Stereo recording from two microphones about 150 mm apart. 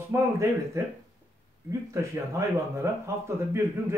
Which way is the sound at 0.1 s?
20° right (ahead or behind).